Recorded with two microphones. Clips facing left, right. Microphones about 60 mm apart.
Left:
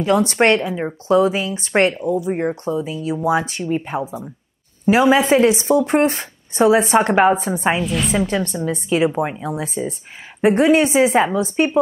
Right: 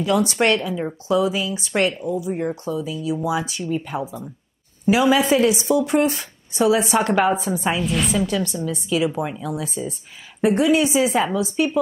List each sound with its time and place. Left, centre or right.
0.0 s speech: left
7.8 s a woman's voice: centre
8.1 s speech: left